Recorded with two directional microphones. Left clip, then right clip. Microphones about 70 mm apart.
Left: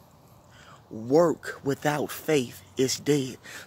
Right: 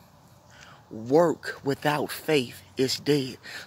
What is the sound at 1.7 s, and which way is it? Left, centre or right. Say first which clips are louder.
Speech: right 1 dB; left.